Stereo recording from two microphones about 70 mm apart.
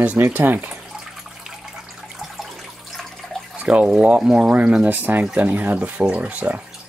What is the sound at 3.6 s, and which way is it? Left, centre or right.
Speech, centre.